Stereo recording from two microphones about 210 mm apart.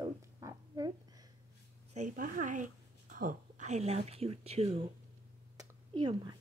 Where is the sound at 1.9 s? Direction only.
35° right (ahead or behind).